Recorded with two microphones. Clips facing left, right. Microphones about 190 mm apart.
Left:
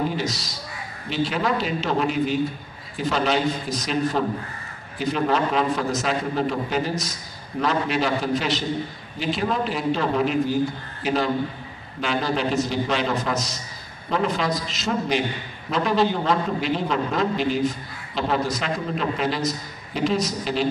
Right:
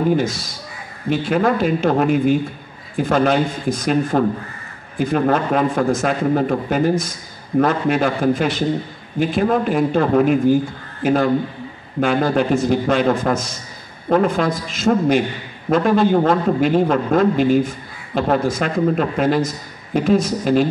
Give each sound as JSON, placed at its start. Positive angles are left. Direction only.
{"t": 0.1, "sound": "a man's voice", "side_deg": -50}